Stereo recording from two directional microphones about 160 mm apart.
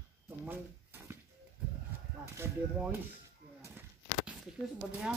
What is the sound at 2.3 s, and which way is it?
Speech, 15° right (ahead or behind).